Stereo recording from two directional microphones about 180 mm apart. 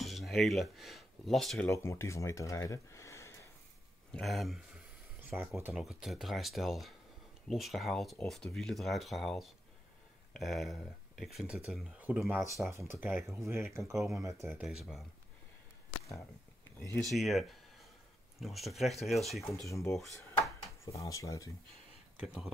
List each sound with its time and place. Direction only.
0.0 s speech: centre (ahead or behind)
1.7 s speech: 15° left (ahead or behind)
4.1 s speech: centre (ahead or behind)
17.1 s speech: centre (ahead or behind)
19.5 s speech: 15° left (ahead or behind)
20.2 s a sound: 15° left (ahead or behind)
20.8 s speech: 15° left (ahead or behind)
22.1 s speech: 5° right (ahead or behind)